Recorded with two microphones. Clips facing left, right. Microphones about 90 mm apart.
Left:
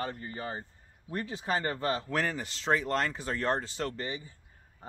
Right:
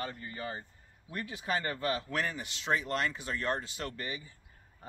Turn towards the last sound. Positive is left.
turn(degrees=30)  # may be behind; listen again after turning